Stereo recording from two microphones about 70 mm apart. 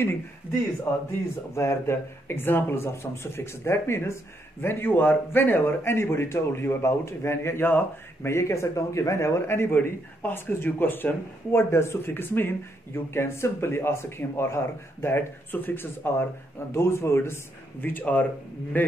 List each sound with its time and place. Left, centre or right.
1.5 s speech: left
17.8 s speech: left